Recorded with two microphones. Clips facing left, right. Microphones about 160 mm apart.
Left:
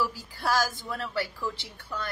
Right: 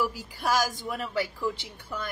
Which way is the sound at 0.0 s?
15° right (ahead or behind).